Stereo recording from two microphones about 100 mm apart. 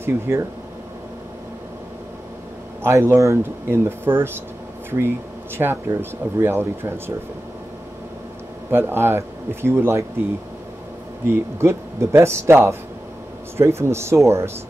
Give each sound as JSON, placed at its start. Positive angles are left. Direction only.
{"t": 0.0, "sound": "speech", "side_deg": -25}
{"t": 2.8, "sound": "speech", "side_deg": -25}
{"t": 5.6, "sound": "speech", "side_deg": -20}
{"t": 8.6, "sound": "speech", "side_deg": -20}
{"t": 11.2, "sound": "speech", "side_deg": -25}